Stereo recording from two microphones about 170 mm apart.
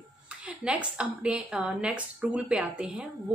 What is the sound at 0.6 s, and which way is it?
Speech, 5° right (ahead or behind).